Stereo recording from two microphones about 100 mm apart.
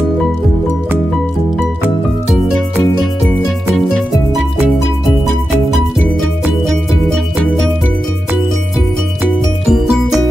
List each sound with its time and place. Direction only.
9.7 s music: 5° right (ahead or behind)